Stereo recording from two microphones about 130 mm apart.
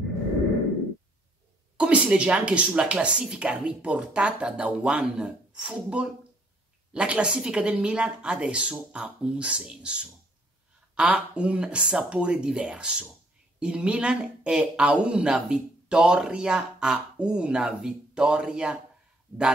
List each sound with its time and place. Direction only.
1.8 s speech: 10° right (ahead or behind)